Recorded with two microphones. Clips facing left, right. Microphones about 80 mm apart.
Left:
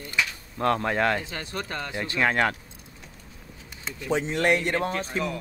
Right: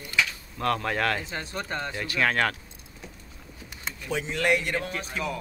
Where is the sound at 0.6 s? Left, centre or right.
Left.